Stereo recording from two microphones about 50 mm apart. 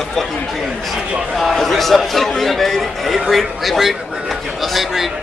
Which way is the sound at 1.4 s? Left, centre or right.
Centre.